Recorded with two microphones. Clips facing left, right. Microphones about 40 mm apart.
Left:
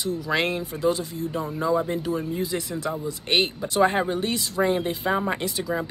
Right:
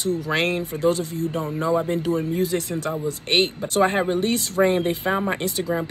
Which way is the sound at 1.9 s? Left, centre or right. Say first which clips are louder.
Right 4 dB; right.